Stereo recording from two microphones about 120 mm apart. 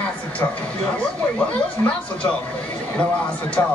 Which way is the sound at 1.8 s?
15° left (ahead or behind).